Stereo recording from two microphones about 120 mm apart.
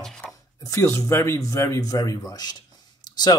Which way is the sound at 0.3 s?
25° left (ahead or behind).